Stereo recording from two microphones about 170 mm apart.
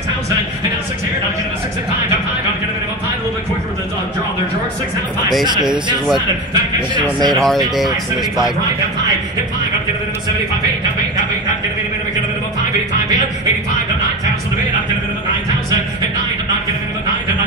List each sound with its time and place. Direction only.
7.0 s speech: 25° right (ahead or behind)
7.3 s speech: centre (ahead or behind)